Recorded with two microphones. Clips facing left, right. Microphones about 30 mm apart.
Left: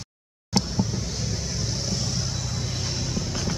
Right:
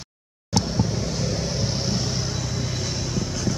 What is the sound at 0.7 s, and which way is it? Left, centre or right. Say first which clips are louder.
Vehicle: right 3 dB; right.